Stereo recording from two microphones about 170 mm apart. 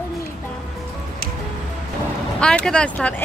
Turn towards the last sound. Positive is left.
turn(degrees=5)  # may be behind; listen again after turning